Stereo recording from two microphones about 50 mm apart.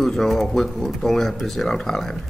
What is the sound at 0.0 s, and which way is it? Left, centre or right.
Speech, centre.